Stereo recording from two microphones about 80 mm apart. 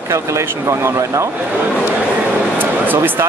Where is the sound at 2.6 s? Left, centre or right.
Right.